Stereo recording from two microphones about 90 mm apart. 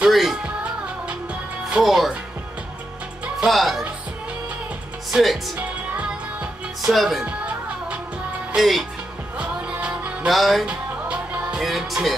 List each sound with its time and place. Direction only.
0.0 s music: centre (ahead or behind)
1.7 s speech: centre (ahead or behind)
3.3 s music: centre (ahead or behind)
5.1 s speech: centre (ahead or behind)
5.6 s music: 15° right (ahead or behind)
6.9 s music: centre (ahead or behind)
7.2 s music: 15° right (ahead or behind)
8.5 s music: centre (ahead or behind)
9.4 s music: 15° right (ahead or behind)
10.3 s music: centre (ahead or behind)
10.7 s music: 15° right (ahead or behind)
11.6 s music: centre (ahead or behind)